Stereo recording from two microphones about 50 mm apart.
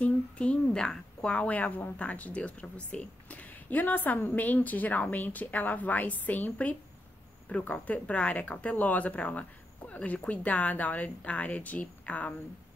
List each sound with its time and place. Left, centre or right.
0.0 s a woman's voice: left